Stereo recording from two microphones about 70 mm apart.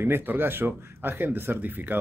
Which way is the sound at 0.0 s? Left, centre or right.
Right.